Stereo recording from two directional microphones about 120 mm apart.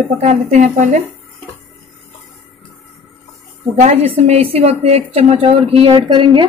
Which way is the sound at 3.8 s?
90° right.